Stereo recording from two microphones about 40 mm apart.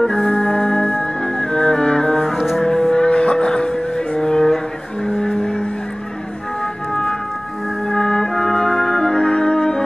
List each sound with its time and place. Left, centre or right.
0.0 s music: left; by 2.6 s centre
2.6 s music: centre
5.0 s vehicle: centre
6.9 s music: centre